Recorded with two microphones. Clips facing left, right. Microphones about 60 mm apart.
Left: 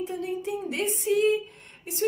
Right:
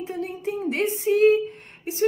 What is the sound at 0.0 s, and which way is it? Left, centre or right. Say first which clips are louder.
A woman's voice: right 1 dB; right.